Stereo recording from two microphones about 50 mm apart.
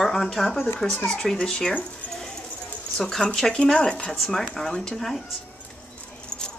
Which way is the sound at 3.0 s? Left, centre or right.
Centre.